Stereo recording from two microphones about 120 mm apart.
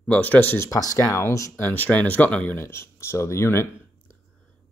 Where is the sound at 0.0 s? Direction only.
15° left (ahead or behind).